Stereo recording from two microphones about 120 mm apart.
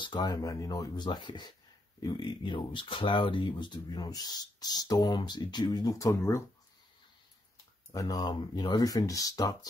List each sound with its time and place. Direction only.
0.0 s speech: 35° left (ahead or behind)
7.9 s speech: 30° left (ahead or behind)